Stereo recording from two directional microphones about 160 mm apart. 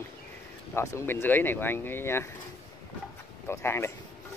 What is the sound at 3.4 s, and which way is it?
Speech, 15° left (ahead or behind).